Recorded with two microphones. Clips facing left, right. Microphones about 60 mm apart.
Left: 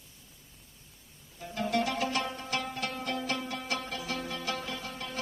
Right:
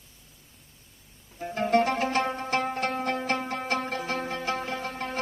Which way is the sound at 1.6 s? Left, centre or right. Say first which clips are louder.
Right 6 dB; right.